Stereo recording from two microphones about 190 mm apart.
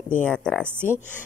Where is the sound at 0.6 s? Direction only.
10° right (ahead or behind).